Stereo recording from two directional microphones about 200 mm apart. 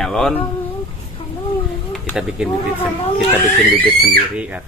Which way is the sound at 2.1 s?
5° right (ahead or behind).